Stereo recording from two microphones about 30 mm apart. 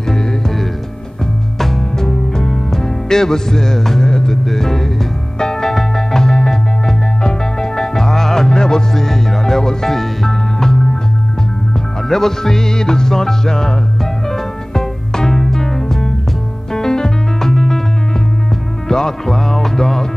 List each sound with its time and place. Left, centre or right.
2.0 s music: centre
4.5 s music: centre
5.4 s music: left
12.1 s music: centre
16.7 s piano: centre
18.9 s music: centre